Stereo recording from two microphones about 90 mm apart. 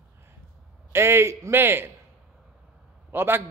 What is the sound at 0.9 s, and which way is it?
A man's voice, 30° right (ahead or behind).